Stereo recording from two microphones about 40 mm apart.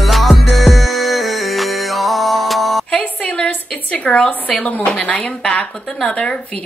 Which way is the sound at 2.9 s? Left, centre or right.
Left.